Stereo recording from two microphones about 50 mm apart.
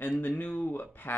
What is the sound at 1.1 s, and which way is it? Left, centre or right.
Speech, left.